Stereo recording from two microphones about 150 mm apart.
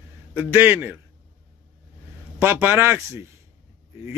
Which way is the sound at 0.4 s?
15° right (ahead or behind).